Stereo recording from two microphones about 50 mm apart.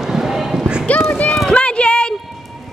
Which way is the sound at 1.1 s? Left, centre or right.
Left.